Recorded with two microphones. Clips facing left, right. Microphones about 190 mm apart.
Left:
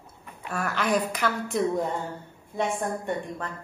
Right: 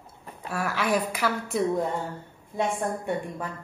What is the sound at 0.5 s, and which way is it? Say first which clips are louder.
A woman's voice: even; 5° right (ahead or behind).